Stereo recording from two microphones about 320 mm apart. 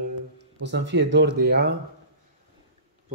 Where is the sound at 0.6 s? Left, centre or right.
Right.